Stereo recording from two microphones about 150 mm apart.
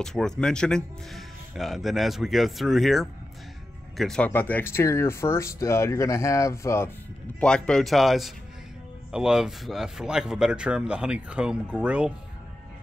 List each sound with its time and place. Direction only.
0.0 s speech: 5° left (ahead or behind); by 6.9 s 20° left (ahead or behind)
7.3 s speech: 5° left (ahead or behind)